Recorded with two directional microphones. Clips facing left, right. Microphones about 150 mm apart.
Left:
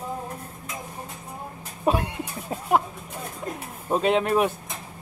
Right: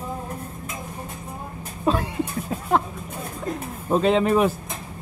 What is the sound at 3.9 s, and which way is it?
Speech, 5° left (ahead or behind).